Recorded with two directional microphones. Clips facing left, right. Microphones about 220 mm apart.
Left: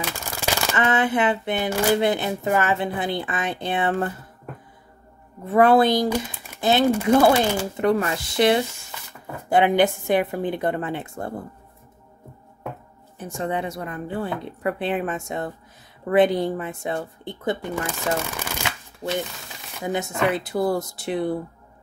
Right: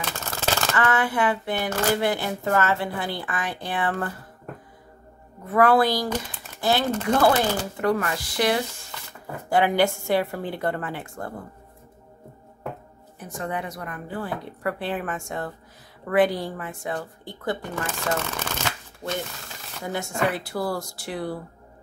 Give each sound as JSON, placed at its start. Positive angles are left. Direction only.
{"t": 0.0, "sound": "shuffling cards", "side_deg": 15}
{"t": 1.7, "sound": "speech", "side_deg": 15}
{"t": 5.5, "sound": "speech", "side_deg": 25}
{"t": 6.0, "sound": "speech", "side_deg": 10}
{"t": 7.7, "sound": "speech", "side_deg": 20}
{"t": 13.2, "sound": "speech", "side_deg": 25}